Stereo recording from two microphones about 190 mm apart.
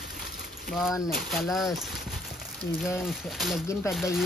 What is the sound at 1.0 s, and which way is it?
Speech, centre (ahead or behind).